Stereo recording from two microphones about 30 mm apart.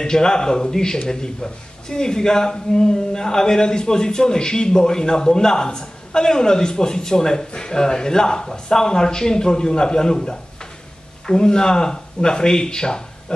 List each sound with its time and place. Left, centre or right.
0.0 s a man's voice: left